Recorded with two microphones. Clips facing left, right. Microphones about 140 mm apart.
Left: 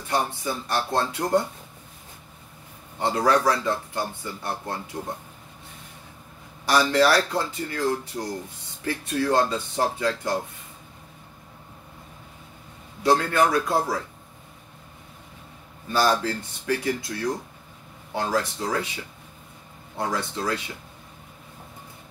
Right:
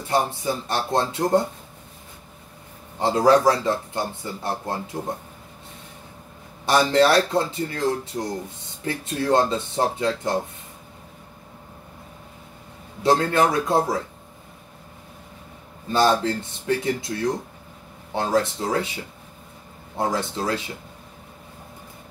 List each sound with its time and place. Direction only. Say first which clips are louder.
0.1 s speech: right 3 dB; 25° right (ahead or behind)
3.0 s speech: right 4 dB; 25° right (ahead or behind)
6.6 s speech: right 2 dB; 25° right (ahead or behind)
13.0 s speech: right 2 dB; 25° right (ahead or behind)
15.9 s speech: right 3 dB; 25° right (ahead or behind)
20.0 s speech: right 3 dB; 25° right (ahead or behind)